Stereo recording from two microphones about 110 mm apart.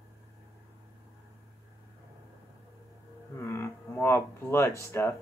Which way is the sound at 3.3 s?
20° left (ahead or behind).